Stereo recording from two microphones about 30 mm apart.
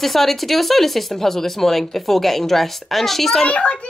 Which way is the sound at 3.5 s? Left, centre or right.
Left.